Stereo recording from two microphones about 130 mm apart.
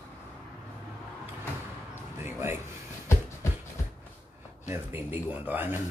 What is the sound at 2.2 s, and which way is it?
Speech, 20° right (ahead or behind).